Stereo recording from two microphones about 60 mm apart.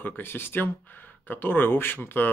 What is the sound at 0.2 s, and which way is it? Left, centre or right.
Speech, left.